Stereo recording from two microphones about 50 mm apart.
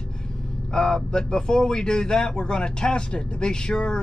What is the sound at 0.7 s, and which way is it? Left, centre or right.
Speech, centre.